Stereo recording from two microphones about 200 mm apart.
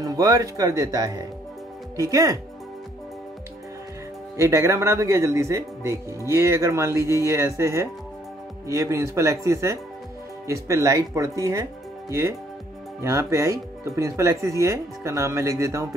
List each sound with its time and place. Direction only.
0.0 s speech: 20° right (ahead or behind)
4.4 s speech: 15° right (ahead or behind)